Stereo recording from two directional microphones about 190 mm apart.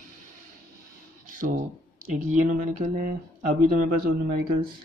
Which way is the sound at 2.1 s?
40° right (ahead or behind).